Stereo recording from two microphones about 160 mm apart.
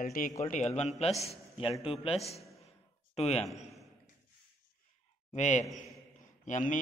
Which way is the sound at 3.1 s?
40° left (ahead or behind).